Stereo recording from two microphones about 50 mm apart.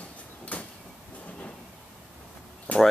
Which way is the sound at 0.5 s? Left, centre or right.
Left.